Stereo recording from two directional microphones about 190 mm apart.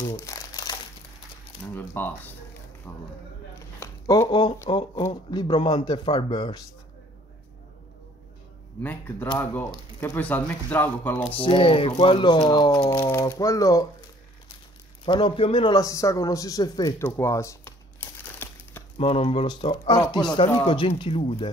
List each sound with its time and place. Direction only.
0.0 s crumpling: 20° left (ahead or behind)
1.7 s a sound: 10° left (ahead or behind)
2.9 s speech: 5° left (ahead or behind)
3.8 s speech: 20° left (ahead or behind)
8.8 s speech: 10° left (ahead or behind)
11.3 s speech: 25° left (ahead or behind)
13.0 s speech: 10° left (ahead or behind)
15.0 s a man's voice: 25° left (ahead or behind)
18.9 s speech: 30° left (ahead or behind)